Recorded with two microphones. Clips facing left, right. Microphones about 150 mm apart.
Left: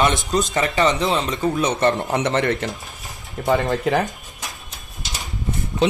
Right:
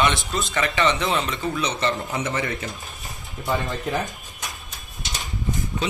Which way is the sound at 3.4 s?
90° left.